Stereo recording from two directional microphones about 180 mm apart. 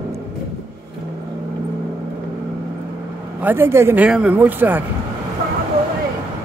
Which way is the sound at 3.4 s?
10° right (ahead or behind).